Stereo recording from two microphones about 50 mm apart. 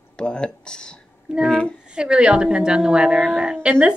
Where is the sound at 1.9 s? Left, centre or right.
Centre.